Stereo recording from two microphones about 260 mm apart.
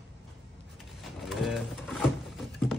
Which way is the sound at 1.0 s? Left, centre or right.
Centre.